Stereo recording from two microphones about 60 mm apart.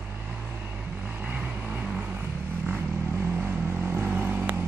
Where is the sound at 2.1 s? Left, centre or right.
Right.